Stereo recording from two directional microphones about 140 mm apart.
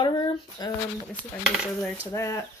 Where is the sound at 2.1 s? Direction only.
20° left (ahead or behind).